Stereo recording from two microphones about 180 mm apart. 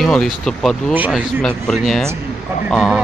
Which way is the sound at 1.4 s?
5° left (ahead or behind).